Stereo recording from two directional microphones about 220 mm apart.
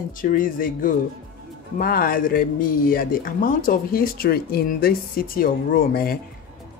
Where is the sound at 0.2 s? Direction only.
40° left (ahead or behind).